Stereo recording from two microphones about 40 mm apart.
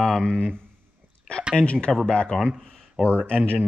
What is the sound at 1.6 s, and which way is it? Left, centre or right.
Speech, left.